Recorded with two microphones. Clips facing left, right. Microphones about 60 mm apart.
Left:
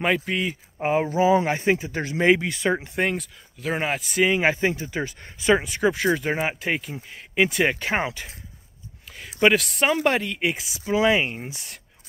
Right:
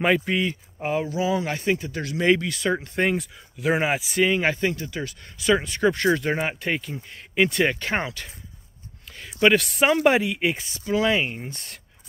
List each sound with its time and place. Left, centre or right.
0.0 s speech: centre
0.7 s speech: left
3.0 s speech: centre
4.2 s speech: centre
5.6 s speech: centre
9.4 s speech: centre
10.8 s speech: centre